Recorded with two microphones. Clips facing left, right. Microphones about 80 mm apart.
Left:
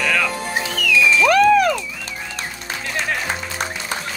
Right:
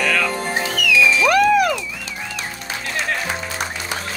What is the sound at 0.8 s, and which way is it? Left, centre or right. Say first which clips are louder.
Music: right 1 dB; left.